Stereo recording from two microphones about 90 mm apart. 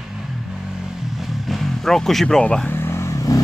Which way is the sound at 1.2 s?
Centre (ahead or behind).